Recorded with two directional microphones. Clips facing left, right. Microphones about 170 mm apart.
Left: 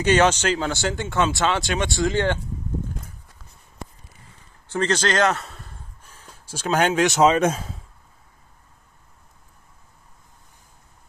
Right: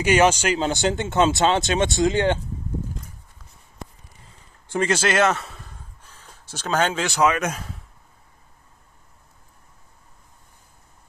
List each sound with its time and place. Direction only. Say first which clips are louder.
0.0 s a man's voice: even; 10° right (ahead or behind)
4.7 s a man's voice: right 1 dB; 10° right (ahead or behind)
6.0 s speech: left 2 dB; 10° left (ahead or behind); by 7.7 s 30° left (ahead or behind)